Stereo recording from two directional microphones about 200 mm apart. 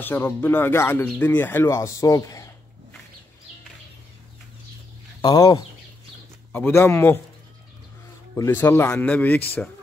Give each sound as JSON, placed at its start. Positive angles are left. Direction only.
{"t": 0.0, "sound": "speech", "side_deg": 10}
{"t": 5.2, "sound": "speech", "side_deg": 20}
{"t": 8.4, "sound": "speech", "side_deg": 10}